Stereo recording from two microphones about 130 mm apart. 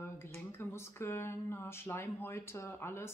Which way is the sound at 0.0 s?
20° left (ahead or behind).